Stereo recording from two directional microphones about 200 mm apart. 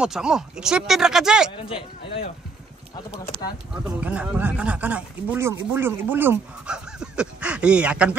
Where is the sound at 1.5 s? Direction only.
25° left (ahead or behind).